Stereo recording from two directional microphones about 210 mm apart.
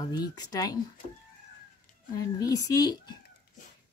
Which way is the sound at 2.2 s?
15° left (ahead or behind).